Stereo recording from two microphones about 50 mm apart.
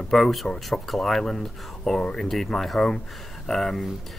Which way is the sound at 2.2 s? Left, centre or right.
Centre.